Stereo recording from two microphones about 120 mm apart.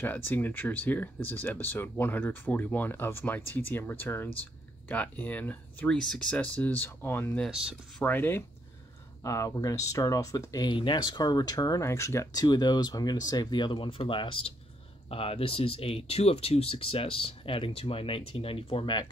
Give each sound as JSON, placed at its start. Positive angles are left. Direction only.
{"t": 0.0, "sound": "speech", "side_deg": 15}